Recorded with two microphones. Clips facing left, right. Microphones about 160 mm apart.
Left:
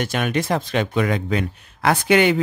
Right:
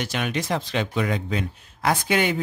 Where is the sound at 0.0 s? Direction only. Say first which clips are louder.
Left 5 dB; 50° left (ahead or behind).